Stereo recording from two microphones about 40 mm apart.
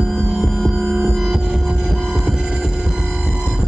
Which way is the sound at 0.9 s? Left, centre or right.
Centre.